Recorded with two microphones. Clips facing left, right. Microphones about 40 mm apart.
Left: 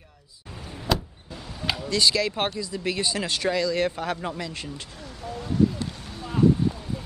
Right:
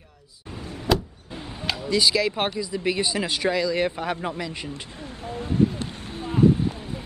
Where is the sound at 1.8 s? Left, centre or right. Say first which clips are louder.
Right 2 dB; centre.